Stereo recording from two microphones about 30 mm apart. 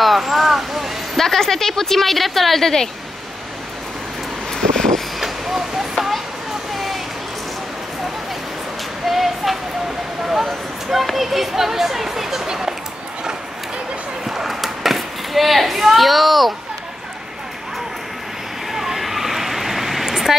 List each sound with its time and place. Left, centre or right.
0.0 s a sound: centre
1.1 s speech: centre
4.5 s vehicle: centre
5.2 s vehicle: centre
6.7 s a sound: centre
9.0 s child singing: centre
10.2 s speech: centre
14.2 s a sound: centre
18.7 s vehicle: centre